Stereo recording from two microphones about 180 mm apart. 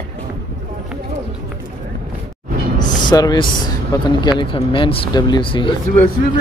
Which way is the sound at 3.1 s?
25° left (ahead or behind).